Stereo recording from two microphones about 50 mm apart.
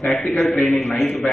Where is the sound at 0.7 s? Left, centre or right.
Centre.